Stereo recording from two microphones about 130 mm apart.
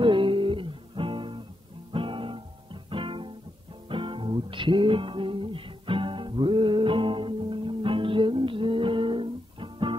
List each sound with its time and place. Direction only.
0.0 s music: 40° right (ahead or behind)
1.9 s guitar: 40° right (ahead or behind)
3.9 s music: 40° right (ahead or behind)